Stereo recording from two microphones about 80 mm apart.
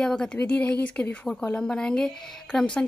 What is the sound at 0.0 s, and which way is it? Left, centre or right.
Speech, centre.